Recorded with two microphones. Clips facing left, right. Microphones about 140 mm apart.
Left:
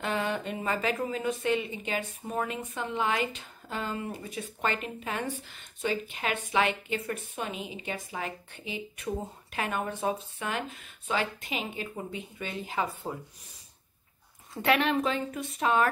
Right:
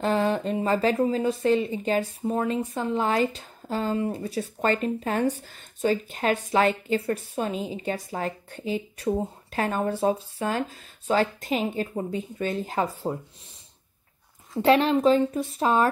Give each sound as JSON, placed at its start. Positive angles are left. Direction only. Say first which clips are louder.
{"t": 0.0, "sound": "speech", "louder": "right 7 dB", "side_deg": -35}
{"t": 14.6, "sound": "speech", "louder": "right 7 dB", "side_deg": -30}